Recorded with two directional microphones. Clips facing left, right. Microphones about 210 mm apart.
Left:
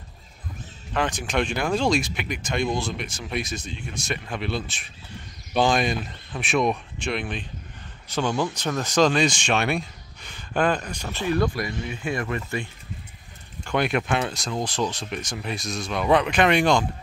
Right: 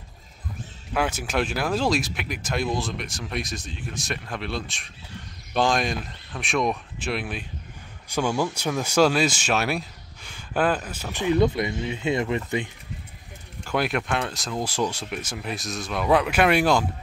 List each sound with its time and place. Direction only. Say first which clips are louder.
0.9 s speech: even; 5° right (ahead or behind)
11.1 s speech: right 3 dB; 20° right (ahead or behind)
13.7 s speech: left 2 dB; centre (ahead or behind)